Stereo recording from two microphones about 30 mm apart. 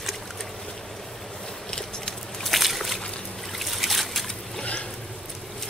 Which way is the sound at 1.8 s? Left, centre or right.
Centre.